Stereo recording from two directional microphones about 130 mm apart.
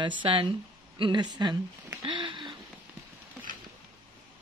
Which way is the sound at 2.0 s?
40° right (ahead or behind).